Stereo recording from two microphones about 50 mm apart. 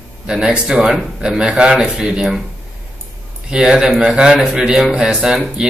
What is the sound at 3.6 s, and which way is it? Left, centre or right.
A man's voice, centre.